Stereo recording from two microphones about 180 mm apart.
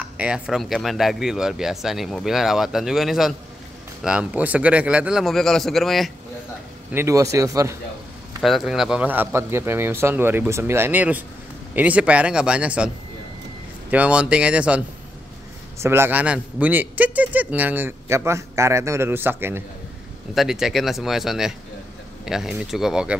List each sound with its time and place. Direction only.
0.0 s speech: 5° right (ahead or behind)
6.9 s a man's voice: 15° right (ahead or behind)
8.4 s a man's voice: centre (ahead or behind)
15.8 s a man's voice: 15° right (ahead or behind)
20.3 s speech: centre (ahead or behind)